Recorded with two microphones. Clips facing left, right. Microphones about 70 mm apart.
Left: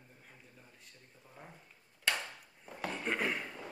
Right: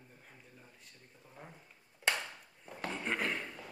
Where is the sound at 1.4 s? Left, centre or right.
Centre.